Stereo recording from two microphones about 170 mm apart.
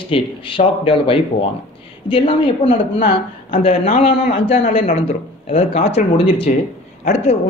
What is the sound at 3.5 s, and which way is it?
A man's voice, 35° left (ahead or behind).